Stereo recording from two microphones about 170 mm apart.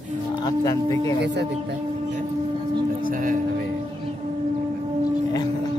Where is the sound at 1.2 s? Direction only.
85° right.